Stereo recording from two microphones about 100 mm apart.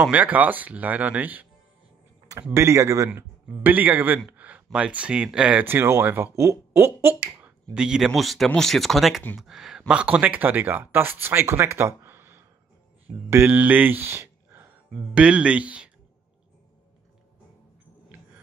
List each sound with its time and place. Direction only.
0.0 s speech: 15° right (ahead or behind)
2.5 s speech: 25° right (ahead or behind)
3.1 s speech: 15° right (ahead or behind)
4.3 s a sound: 15° right (ahead or behind)
4.7 s speech: 10° right (ahead or behind)
7.7 s speech: 10° right (ahead or behind); by 14.7 s 25° right (ahead or behind)
15.1 s speech: 10° right (ahead or behind)